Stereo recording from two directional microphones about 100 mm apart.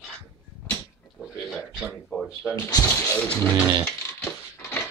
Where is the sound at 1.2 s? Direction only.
Centre (ahead or behind).